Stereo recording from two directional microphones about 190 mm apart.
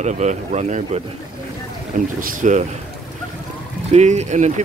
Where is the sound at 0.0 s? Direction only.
40° right (ahead or behind).